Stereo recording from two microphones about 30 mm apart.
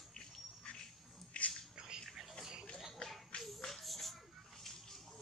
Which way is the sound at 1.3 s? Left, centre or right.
Left.